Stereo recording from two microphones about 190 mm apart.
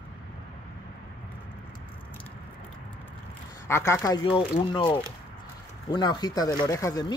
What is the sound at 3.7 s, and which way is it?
Speech, 15° left (ahead or behind).